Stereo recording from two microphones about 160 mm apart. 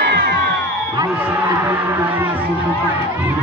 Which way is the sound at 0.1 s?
90° right.